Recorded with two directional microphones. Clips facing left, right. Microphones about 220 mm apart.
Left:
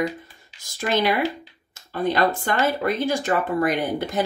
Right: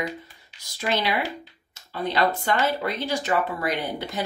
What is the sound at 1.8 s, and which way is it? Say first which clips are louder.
Speech: left 3 dB; 50° left (ahead or behind).